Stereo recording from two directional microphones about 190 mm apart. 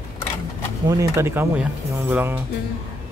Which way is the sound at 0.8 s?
15° right (ahead or behind).